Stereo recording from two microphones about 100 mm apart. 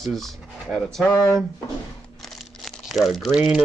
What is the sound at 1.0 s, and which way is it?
Speech, 30° left (ahead or behind).